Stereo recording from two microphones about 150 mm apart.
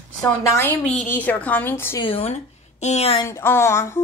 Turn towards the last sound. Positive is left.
turn(degrees=20)  # may be behind; listen again after turning